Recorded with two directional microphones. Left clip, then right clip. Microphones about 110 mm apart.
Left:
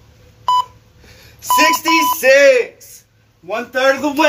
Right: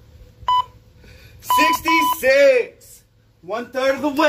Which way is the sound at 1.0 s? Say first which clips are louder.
Left 6 dB; 30° right (ahead or behind).